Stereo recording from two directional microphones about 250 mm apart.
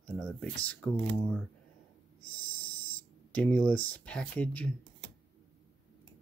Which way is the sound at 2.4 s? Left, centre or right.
Left.